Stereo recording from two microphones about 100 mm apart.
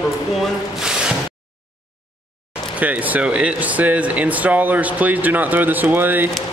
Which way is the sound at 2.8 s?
15° right (ahead or behind).